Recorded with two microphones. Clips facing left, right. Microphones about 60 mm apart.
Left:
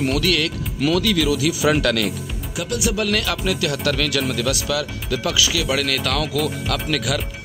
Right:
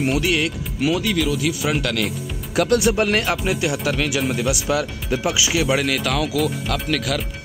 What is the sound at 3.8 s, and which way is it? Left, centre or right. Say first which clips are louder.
Speech: even; centre.